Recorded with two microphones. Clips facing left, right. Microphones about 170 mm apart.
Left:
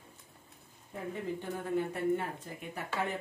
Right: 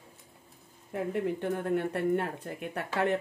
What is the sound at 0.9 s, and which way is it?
Speech, 70° right (ahead or behind).